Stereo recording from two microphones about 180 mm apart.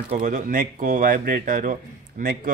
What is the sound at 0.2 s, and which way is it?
Speech, 45° right (ahead or behind).